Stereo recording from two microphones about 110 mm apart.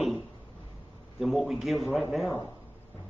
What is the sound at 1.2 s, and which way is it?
A man's voice, centre (ahead or behind).